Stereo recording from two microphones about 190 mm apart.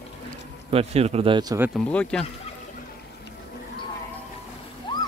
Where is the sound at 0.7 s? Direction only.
35° right (ahead or behind).